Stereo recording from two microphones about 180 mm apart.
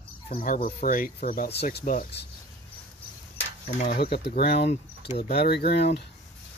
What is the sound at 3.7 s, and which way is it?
Speech, 60° left (ahead or behind).